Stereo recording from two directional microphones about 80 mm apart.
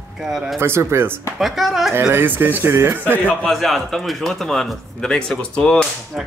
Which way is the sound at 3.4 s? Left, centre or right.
Centre.